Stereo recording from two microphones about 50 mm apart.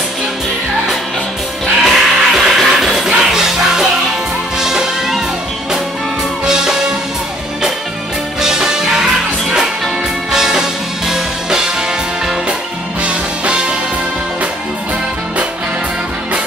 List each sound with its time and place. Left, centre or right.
1.8 s music: centre
6.4 s music: centre
8.4 s music: centre
13.0 s music: right